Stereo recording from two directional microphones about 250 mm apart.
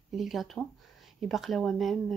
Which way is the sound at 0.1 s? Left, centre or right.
Centre.